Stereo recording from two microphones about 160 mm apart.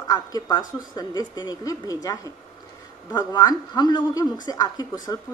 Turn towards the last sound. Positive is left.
turn(degrees=20)  # may be behind; listen again after turning